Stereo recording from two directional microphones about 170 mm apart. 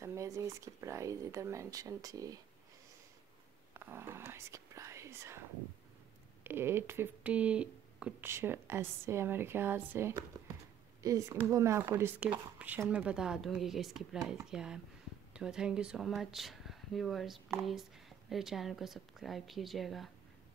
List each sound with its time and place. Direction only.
0.0 s speech: 15° right (ahead or behind)
3.7 s speech: 15° right (ahead or behind)
6.4 s speech: 15° right (ahead or behind)